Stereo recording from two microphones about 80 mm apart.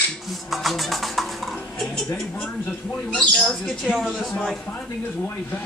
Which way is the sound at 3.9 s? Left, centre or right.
Centre.